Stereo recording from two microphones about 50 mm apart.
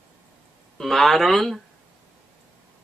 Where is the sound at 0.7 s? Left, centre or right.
Centre.